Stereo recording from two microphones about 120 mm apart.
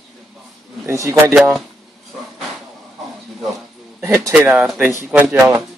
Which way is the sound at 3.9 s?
25° right (ahead or behind).